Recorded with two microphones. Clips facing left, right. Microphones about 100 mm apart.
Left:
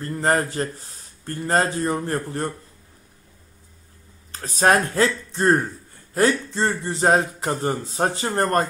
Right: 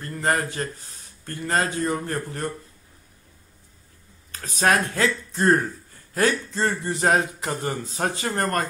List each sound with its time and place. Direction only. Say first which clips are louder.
0.1 s speech: left 3 dB; 35° left (ahead or behind)
4.3 s speech: left 3 dB; 30° left (ahead or behind)